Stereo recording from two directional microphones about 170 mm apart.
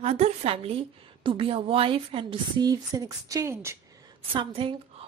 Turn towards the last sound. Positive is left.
turn(degrees=-30)  # may be behind; listen again after turning